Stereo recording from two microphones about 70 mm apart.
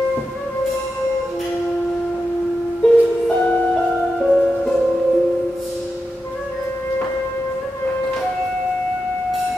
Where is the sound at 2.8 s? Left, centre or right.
Centre.